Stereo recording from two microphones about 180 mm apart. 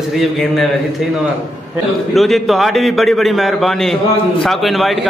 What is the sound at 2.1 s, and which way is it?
A man's voice, centre (ahead or behind).